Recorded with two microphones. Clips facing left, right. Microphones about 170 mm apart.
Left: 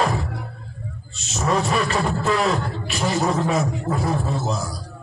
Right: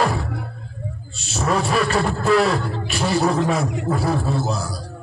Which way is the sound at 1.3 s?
30° right (ahead or behind).